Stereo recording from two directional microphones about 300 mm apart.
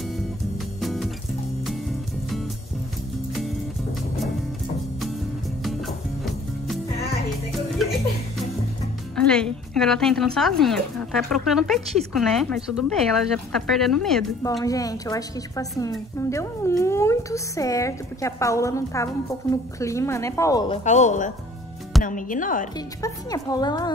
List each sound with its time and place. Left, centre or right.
0.7 s music: centre
5.6 s music: centre
9.1 s a woman's voice: centre
20.8 s speech: left
22.8 s a woman's voice: centre